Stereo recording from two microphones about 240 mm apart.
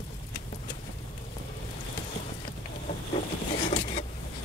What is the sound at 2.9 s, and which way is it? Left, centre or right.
Vehicle, left.